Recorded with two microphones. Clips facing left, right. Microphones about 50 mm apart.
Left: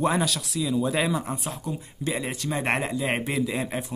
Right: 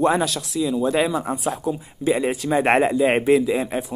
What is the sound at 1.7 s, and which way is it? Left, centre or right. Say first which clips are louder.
Speech: right 8 dB; centre.